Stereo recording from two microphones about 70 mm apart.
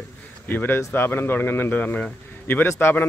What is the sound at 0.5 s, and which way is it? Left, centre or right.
Speech, left.